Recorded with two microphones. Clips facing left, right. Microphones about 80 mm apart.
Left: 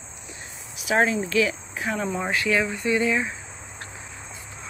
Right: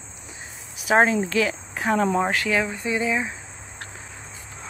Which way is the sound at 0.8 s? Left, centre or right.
Right.